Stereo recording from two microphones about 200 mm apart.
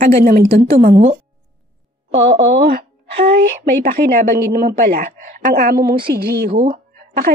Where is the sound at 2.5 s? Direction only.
50° right (ahead or behind).